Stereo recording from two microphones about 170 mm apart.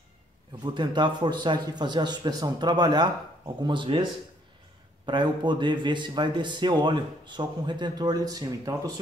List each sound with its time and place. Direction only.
0.7 s speech: 25° right (ahead or behind)